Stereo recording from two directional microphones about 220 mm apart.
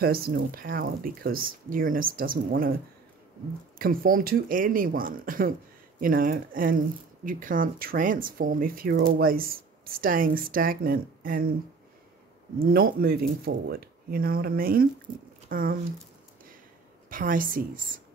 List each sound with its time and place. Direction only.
0.0 s speech: 45° right (ahead or behind)
3.7 s speech: 40° right (ahead or behind)
12.5 s speech: 40° right (ahead or behind)
17.1 s speech: 40° right (ahead or behind)